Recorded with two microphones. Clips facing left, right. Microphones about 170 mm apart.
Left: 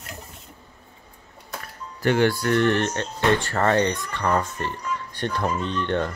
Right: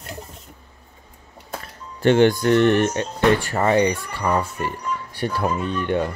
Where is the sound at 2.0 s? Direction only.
20° right (ahead or behind).